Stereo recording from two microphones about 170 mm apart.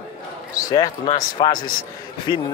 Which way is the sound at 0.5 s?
25° left (ahead or behind).